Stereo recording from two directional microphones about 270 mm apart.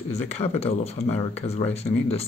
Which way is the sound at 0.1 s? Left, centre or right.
Left.